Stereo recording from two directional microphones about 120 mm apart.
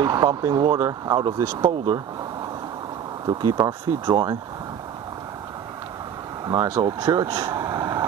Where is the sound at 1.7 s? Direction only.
40° right (ahead or behind).